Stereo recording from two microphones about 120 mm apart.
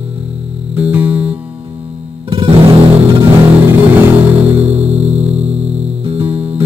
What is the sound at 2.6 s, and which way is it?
Music, 60° right (ahead or behind).